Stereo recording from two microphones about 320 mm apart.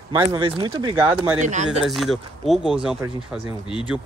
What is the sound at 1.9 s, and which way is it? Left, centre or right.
Speech, centre.